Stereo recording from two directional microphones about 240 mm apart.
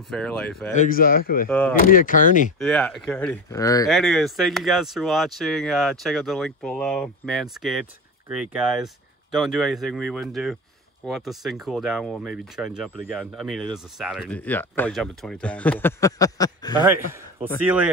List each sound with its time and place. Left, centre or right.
0.1 s speech: centre
0.7 s a man's voice: left
2.6 s speech: centre
3.9 s speech: centre